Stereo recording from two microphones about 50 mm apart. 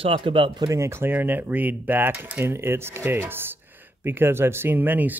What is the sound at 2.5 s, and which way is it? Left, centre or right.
Speech, right.